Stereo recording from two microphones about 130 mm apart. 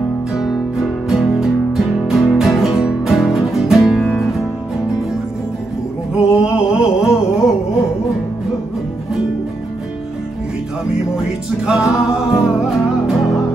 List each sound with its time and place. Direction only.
0.4 s music: centre (ahead or behind)
6.1 s music: 5° right (ahead or behind)
11.8 s music: 25° left (ahead or behind)
12.4 s music: centre (ahead or behind)